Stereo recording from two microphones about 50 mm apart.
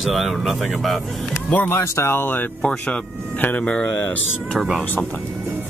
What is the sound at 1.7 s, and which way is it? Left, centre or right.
Speech, left.